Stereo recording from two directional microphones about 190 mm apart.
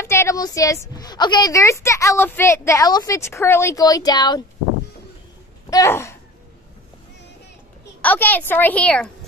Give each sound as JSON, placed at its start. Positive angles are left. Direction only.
{"t": 0.0, "sound": "a woman's voice", "side_deg": 15}
{"t": 5.7, "sound": "a sound", "side_deg": 15}
{"t": 8.0, "sound": "a woman's voice", "side_deg": 10}